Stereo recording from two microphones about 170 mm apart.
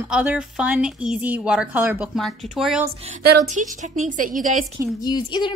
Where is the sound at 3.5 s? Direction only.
45° right (ahead or behind).